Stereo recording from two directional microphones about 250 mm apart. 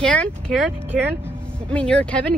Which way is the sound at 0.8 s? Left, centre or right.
Centre.